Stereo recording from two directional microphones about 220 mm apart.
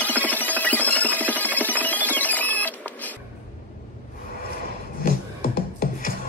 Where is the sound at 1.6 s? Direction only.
5° left (ahead or behind).